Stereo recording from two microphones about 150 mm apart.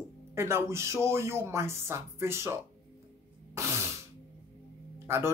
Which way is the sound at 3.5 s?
20° right (ahead or behind).